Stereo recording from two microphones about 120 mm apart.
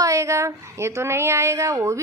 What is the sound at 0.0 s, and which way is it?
Speech, 25° right (ahead or behind).